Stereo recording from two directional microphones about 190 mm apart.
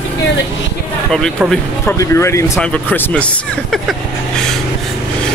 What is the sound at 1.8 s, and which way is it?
Speech, 15° left (ahead or behind).